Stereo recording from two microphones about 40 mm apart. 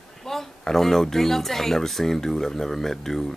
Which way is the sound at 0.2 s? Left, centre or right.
Centre.